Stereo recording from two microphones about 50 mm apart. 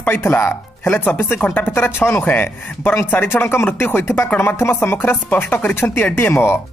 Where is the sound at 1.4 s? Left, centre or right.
Left.